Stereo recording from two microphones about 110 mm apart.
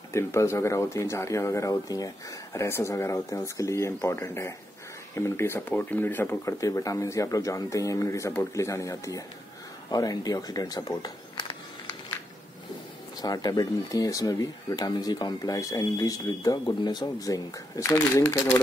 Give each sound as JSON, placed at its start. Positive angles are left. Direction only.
{"t": 0.1, "sound": "speech", "side_deg": 25}
{"t": 13.2, "sound": "speech", "side_deg": 35}